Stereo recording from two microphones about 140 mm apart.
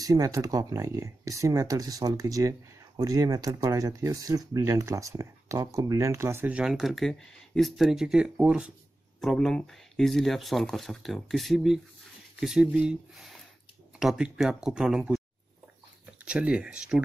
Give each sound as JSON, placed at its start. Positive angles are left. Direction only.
{"t": 0.0, "sound": "speech", "side_deg": -25}